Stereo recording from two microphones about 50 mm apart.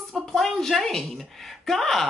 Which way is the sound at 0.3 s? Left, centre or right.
Centre.